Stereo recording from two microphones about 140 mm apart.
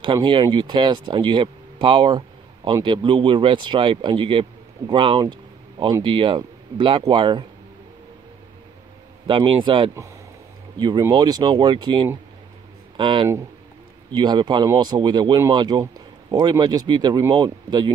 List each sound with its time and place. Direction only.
0.0 s speech: 35° right (ahead or behind)
9.3 s speech: 35° right (ahead or behind)